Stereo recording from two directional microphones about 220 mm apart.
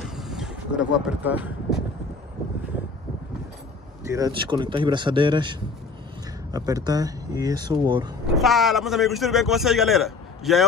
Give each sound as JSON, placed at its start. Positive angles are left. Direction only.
{"t": 0.0, "sound": "vehicle", "side_deg": 0}
{"t": 4.1, "sound": "speech", "side_deg": -20}
{"t": 8.4, "sound": "a man's voice", "side_deg": 0}